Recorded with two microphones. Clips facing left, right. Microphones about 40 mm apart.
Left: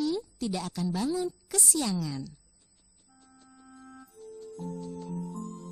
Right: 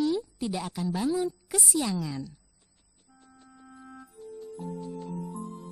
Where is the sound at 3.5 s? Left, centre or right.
Right.